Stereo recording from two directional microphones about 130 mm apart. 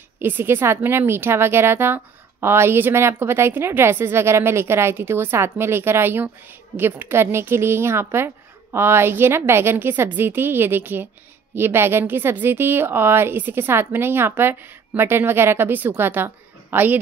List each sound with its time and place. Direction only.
0.2 s a woman's voice: 15° right (ahead or behind)